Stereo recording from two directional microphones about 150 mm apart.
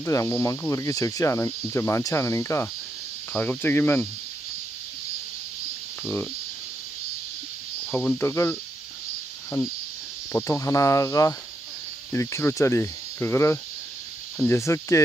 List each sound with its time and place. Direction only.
0.0 s speech: 20° left (ahead or behind)
3.3 s cricket: 10° left (ahead or behind)
7.8 s speech: 5° left (ahead or behind)
10.3 s speech: 20° left (ahead or behind)
12.1 s cricket: 20° left (ahead or behind)
14.4 s speech: 20° left (ahead or behind)